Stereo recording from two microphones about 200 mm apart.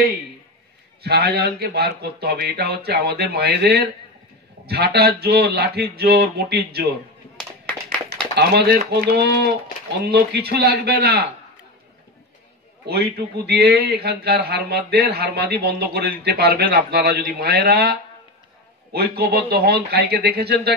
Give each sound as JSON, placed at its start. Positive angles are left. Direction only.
{"t": 1.0, "sound": "a man's voice", "side_deg": -50}
{"t": 8.4, "sound": "a man's voice", "side_deg": -55}
{"t": 12.8, "sound": "a man's voice", "side_deg": -55}